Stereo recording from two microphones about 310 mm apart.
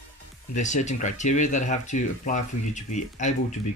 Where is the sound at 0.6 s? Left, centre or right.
Left.